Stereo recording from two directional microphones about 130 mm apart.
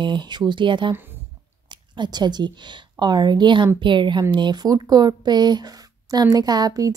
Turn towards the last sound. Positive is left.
turn(degrees=-30)  # may be behind; listen again after turning